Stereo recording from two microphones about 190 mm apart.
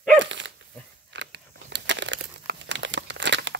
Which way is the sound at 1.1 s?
70° right (ahead or behind).